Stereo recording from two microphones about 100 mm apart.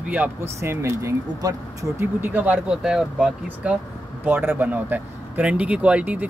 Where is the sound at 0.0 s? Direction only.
15° right (ahead or behind).